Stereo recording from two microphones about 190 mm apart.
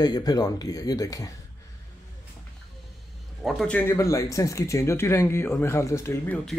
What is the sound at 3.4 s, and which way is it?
Speech, 5° left (ahead or behind).